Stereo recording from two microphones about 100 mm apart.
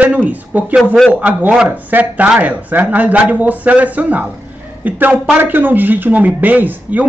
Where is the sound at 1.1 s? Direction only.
15° right (ahead or behind).